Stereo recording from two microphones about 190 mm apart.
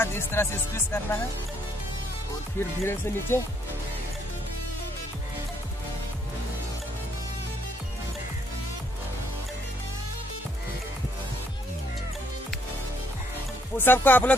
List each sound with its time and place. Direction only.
0.0 s music: 15° left (ahead or behind)
2.8 s music: 15° left (ahead or behind)
13.7 s music: 10° left (ahead or behind)